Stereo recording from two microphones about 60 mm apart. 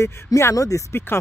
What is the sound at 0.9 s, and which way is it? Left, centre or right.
Speech, left.